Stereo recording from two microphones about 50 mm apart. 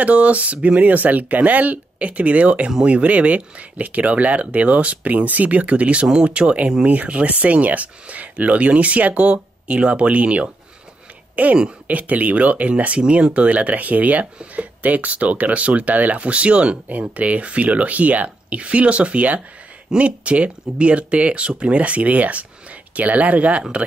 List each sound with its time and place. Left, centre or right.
0.0 s speech: right